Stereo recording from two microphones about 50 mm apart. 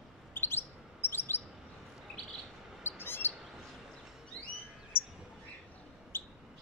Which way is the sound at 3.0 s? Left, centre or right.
Left.